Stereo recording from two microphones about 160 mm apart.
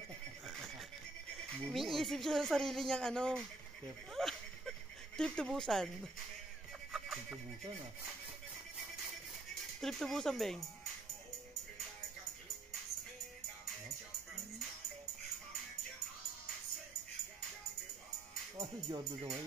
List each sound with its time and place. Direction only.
0.5 s a sound: centre (ahead or behind)
1.4 s speech: centre (ahead or behind)
4.1 s a sound: centre (ahead or behind)
6.9 s music: centre (ahead or behind)
9.8 s speech: centre (ahead or behind)
18.6 s speech: 20° right (ahead or behind)